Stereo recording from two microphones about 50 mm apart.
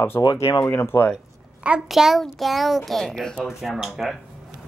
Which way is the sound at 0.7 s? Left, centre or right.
Left.